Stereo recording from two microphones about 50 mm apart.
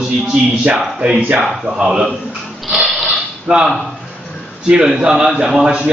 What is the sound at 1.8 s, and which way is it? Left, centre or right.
Speech, centre.